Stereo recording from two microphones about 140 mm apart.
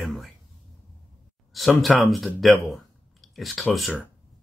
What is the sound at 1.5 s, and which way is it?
Speech, centre (ahead or behind).